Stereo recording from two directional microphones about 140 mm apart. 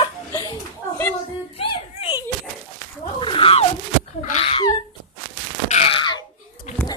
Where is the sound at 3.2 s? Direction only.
40° left (ahead or behind).